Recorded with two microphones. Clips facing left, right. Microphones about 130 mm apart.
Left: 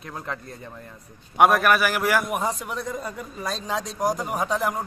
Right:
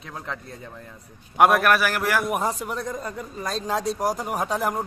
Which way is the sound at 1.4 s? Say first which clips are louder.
Even; centre (ahead or behind).